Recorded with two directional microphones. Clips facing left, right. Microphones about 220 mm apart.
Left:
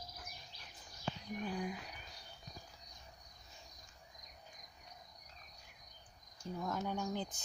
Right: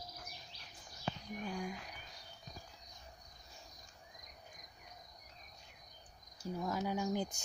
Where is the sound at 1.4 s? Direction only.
5° left (ahead or behind).